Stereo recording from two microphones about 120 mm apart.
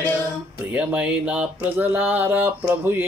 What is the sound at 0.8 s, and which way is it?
Speech, 10° right (ahead or behind).